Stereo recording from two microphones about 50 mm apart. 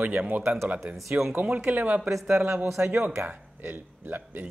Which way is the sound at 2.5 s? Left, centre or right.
Right.